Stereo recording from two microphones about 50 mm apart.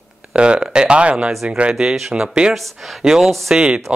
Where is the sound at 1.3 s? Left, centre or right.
Centre.